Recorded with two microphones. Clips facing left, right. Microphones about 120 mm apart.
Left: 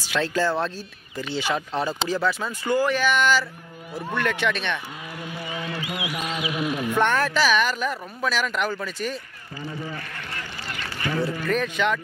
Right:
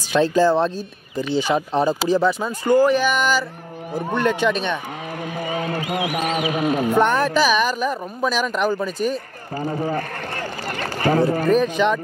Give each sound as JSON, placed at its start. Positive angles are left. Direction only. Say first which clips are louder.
{"t": 0.1, "sound": "speech", "louder": "right 7 dB", "side_deg": -15}
{"t": 5.4, "sound": "speech", "louder": "right 7 dB", "side_deg": -45}
{"t": 7.0, "sound": "speech", "louder": "right 3 dB", "side_deg": -15}
{"t": 9.1, "sound": "speech", "louder": "right 8 dB", "side_deg": -50}
{"t": 11.8, "sound": "speech", "louder": "right 5 dB", "side_deg": -15}